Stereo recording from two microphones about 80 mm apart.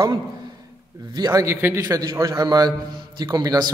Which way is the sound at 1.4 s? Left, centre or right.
Right.